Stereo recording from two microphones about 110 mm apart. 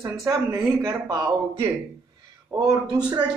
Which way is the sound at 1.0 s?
45° right (ahead or behind).